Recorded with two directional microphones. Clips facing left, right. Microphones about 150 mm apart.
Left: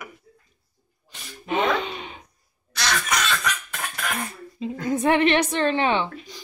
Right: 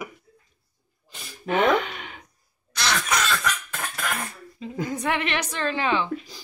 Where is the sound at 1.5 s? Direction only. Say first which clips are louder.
Right 2 dB; 20° left (ahead or behind).